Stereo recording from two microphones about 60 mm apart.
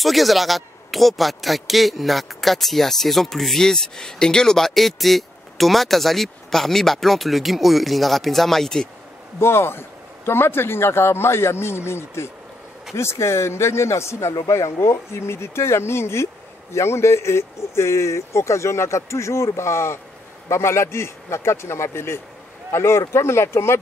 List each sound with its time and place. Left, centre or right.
0.0 s a man's voice: centre
9.4 s speech: left